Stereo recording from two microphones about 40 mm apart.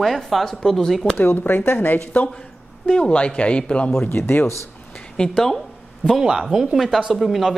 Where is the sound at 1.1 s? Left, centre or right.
Left.